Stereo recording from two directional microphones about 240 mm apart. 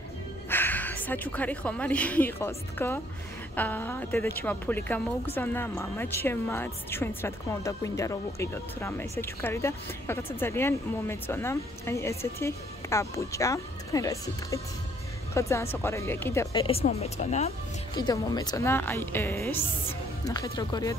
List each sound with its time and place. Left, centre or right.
0.5 s a woman's voice: centre
16.6 s speech: left
17.9 s a woman's voice: centre